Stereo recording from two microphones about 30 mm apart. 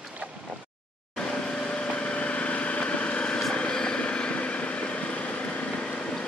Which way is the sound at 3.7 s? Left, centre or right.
Left.